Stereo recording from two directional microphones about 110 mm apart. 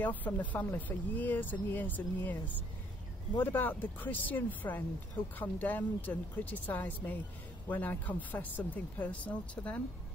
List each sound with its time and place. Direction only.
0.0 s speech: 15° left (ahead or behind)